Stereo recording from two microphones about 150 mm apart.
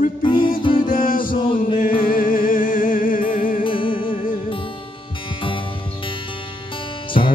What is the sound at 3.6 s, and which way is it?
Music, 35° left (ahead or behind).